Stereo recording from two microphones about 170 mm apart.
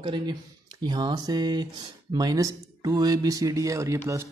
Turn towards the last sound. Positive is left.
turn(degrees=-15)  # may be behind; listen again after turning